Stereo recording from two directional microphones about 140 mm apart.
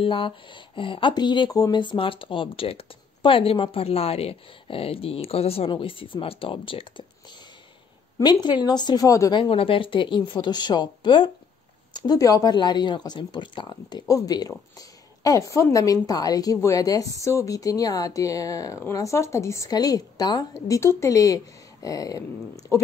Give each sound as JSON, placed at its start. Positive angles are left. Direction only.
{"t": 0.0, "sound": "speech", "side_deg": 35}
{"t": 8.2, "sound": "speech", "side_deg": 30}
{"t": 9.4, "sound": "a woman's voice", "side_deg": 40}